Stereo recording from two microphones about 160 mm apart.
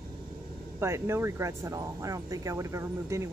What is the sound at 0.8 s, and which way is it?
Speech, 15° right (ahead or behind).